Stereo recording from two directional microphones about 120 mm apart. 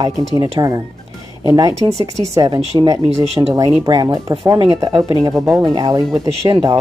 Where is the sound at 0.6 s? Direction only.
35° right (ahead or behind).